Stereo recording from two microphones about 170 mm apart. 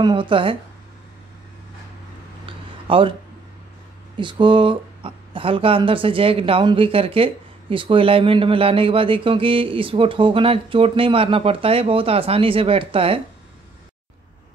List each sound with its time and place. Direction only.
0.0 s speech: 30° right (ahead or behind)
2.4 s a sound: 30° right (ahead or behind)
4.2 s speech: 30° right (ahead or behind)